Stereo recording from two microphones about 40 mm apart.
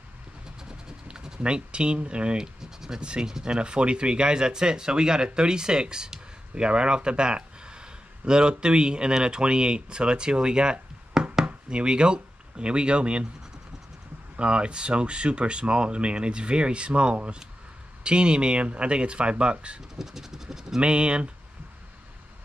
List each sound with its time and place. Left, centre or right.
1.0 s speech: right
2.3 s a sound: centre
3.0 s speech: right
3.3 s speech: centre
3.5 s speech: right
14.3 s speech: right
20.0 s speech: centre
20.8 s speech: right